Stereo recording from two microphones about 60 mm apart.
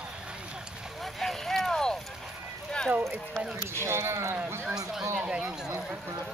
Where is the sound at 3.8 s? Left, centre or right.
Right.